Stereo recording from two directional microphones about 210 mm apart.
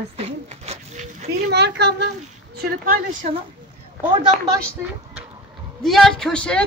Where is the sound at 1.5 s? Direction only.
55° right (ahead or behind).